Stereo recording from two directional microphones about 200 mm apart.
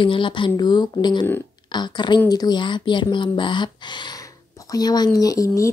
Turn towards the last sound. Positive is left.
turn(degrees=15)  # may be behind; listen again after turning